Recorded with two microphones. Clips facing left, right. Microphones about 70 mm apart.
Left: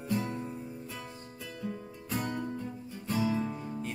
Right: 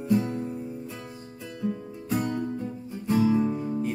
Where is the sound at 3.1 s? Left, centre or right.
Centre.